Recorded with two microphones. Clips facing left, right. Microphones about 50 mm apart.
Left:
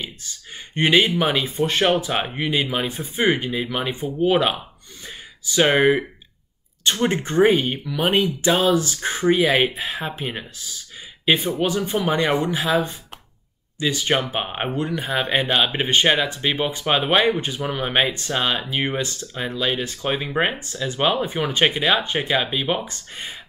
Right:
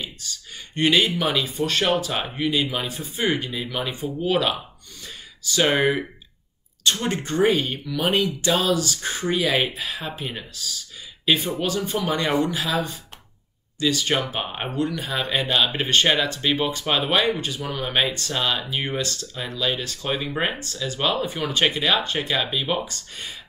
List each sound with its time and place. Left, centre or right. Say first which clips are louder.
0.0 s speech: left 1 dB; left
22.6 s speech: left 2 dB; centre
22.8 s speech: left 2 dB; left